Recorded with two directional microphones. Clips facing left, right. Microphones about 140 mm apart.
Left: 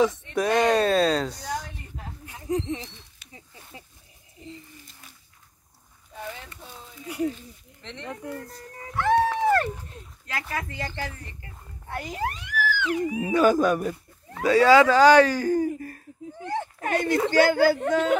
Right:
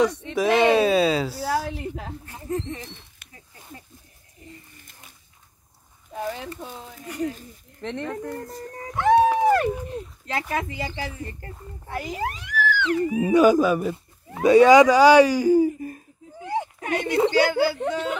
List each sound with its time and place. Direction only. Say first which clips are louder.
0.3 s speech: right 6 dB; centre (ahead or behind)
1.4 s a sound: right 8 dB; 90° right
2.4 s speech: left 2 dB; 15° left (ahead or behind)
6.6 s speech: right 5 dB; 50° right (ahead or behind)
8.9 s speech: right 4 dB; 15° right (ahead or behind)
10.3 s speech: right 5 dB; 30° right (ahead or behind)
10.7 s speech: right 2 dB; 10° right (ahead or behind); by 13.2 s 15° left (ahead or behind)
13.2 s speech: right 4 dB; 10° right (ahead or behind)
14.4 s speech: right 4 dB; 20° right (ahead or behind)
16.8 s speech: left 4 dB; 45° left (ahead or behind)
17.1 s speech: right 1 dB; 20° right (ahead or behind)
17.5 s speech: left 2 dB; 45° left (ahead or behind)